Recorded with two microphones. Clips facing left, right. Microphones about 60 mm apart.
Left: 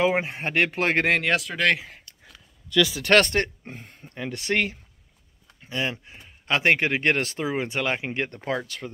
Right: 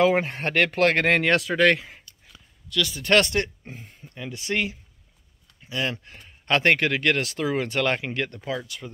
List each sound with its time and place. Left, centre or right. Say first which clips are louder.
0.0 s speech: right 2 dB; centre
1.1 s speech: right 3 dB; centre
3.1 s speech: right 1 dB; left
5.6 s speech: even; left
6.0 s speech: right 2 dB; centre
6.8 s speech: even; left
7.3 s speech: right 2 dB; left
8.4 s speech: left 2 dB; left